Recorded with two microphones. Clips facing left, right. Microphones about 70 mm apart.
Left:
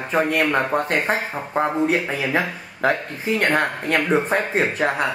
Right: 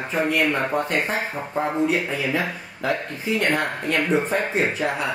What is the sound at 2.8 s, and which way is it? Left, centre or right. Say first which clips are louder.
Speech: left 4 dB; left.